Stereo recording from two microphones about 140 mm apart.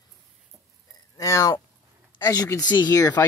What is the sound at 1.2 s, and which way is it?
Speech, 20° left (ahead or behind).